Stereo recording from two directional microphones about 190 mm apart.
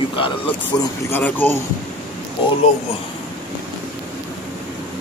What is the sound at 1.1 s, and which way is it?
Speech, 10° left (ahead or behind).